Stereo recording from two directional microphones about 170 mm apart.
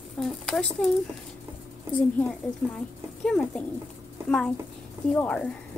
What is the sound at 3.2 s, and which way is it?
Speech, 5° left (ahead or behind).